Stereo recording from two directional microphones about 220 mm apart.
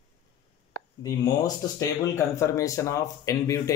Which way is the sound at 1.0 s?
15° left (ahead or behind).